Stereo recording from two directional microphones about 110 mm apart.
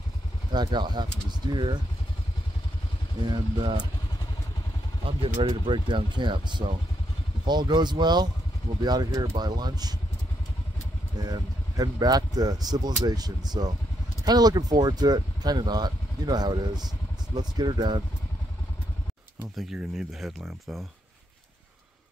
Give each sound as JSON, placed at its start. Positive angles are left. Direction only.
{"t": 0.5, "sound": "speech", "side_deg": -45}
{"t": 3.3, "sound": "speech", "side_deg": -45}
{"t": 5.0, "sound": "speech", "side_deg": -60}
{"t": 5.5, "sound": "speech", "side_deg": -45}
{"t": 11.2, "sound": "speech", "side_deg": -35}
{"t": 19.5, "sound": "speech", "side_deg": 0}